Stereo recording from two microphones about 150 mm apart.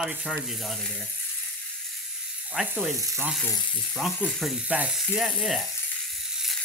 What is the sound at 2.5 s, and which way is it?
Speech, 5° right (ahead or behind).